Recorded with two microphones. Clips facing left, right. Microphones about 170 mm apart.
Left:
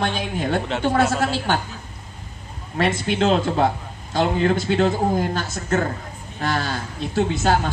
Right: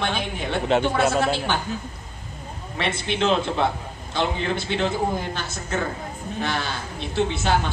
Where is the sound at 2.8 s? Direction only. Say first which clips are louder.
Left 4 dB; 40° left (ahead or behind).